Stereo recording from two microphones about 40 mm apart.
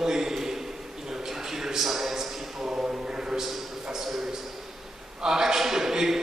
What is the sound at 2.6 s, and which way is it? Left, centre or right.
A man's voice, right.